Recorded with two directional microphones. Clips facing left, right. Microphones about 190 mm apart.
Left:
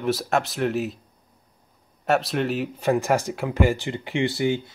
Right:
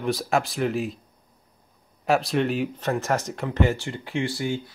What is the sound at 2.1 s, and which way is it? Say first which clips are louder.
Speech: even; centre (ahead or behind).